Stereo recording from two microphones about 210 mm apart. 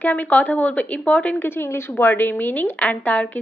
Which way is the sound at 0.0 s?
5° left (ahead or behind).